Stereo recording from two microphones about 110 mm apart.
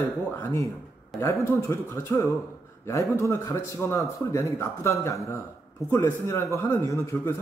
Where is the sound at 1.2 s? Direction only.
25° left (ahead or behind).